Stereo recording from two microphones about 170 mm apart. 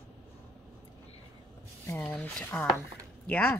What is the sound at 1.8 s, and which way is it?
Speech, 10° left (ahead or behind).